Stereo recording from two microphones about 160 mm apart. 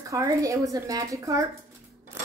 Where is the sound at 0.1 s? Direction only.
20° right (ahead or behind).